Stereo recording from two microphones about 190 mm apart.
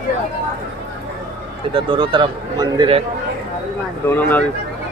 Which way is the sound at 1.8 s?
25° right (ahead or behind).